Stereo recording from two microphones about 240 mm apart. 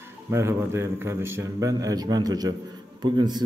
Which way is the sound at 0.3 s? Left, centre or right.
Centre.